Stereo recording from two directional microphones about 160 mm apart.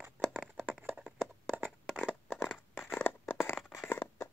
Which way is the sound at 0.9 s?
Centre (ahead or behind).